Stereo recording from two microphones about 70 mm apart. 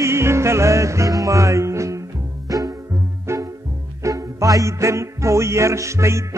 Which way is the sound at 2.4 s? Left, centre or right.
Right.